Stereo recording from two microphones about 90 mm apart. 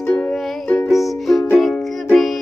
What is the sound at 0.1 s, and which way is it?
Music, 10° left (ahead or behind).